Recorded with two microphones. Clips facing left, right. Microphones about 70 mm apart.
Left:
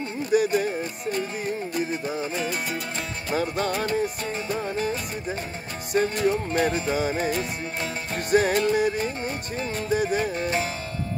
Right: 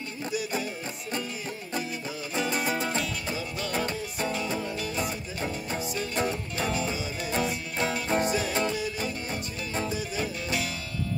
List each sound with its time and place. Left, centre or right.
0.3 s music: left
3.3 s music: left
6.2 s music: left